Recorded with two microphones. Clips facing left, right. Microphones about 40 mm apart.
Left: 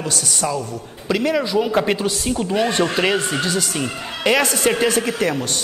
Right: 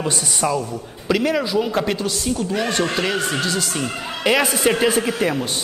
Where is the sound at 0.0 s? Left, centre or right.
Centre.